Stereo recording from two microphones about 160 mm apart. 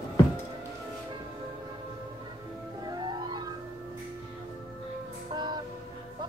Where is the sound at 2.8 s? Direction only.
25° right (ahead or behind).